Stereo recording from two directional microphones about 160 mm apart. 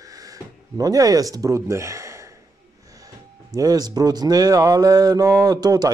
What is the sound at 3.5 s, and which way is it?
Speech, 25° right (ahead or behind).